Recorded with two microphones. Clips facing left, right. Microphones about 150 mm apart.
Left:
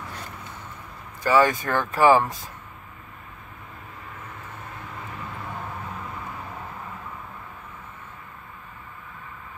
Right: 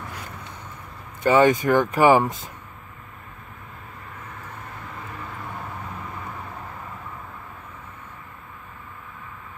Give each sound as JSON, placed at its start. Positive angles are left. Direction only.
{"t": 1.2, "sound": "speech", "side_deg": -20}